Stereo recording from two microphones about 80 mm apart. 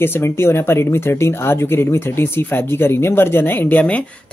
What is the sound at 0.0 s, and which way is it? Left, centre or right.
Speech, left.